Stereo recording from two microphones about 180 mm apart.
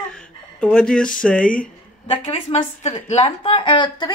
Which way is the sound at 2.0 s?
35° left (ahead or behind).